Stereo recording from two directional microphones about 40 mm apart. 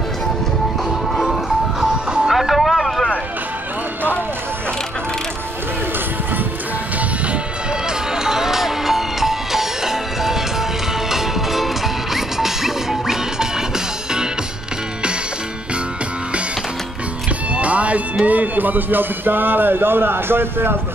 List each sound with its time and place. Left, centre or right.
1.1 s music: centre
1.8 s music: centre
2.2 s vehicle: centre
8.1 s music: centre
17.5 s music: right
18.2 s speech: right